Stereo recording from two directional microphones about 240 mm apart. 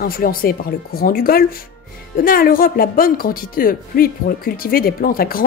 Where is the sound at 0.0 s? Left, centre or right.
Left.